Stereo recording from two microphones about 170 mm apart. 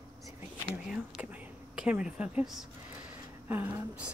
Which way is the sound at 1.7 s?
5° right (ahead or behind).